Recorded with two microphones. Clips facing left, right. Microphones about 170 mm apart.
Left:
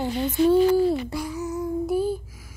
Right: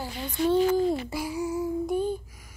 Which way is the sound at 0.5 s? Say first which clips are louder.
Left 2 dB; 10° left (ahead or behind).